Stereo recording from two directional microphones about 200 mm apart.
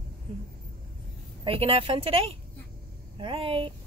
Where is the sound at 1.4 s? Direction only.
30° right (ahead or behind).